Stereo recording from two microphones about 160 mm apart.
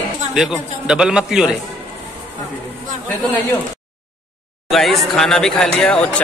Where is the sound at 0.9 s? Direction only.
5° right (ahead or behind).